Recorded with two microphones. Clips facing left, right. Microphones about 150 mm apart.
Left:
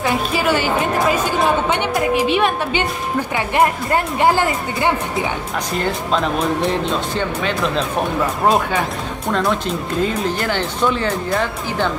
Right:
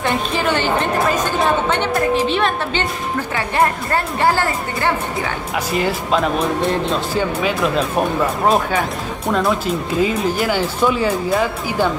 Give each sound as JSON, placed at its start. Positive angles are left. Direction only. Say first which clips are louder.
{"t": 0.0, "sound": "a woman's voice", "louder": "left 1 dB", "side_deg": 5}
{"t": 5.7, "sound": "speech", "louder": "right 2 dB", "side_deg": -5}